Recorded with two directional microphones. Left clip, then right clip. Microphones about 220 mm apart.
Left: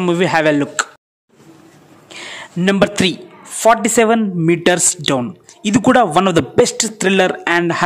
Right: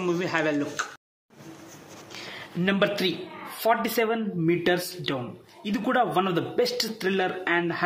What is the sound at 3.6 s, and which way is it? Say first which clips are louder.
A man's voice: left 12 dB; 45° left (ahead or behind).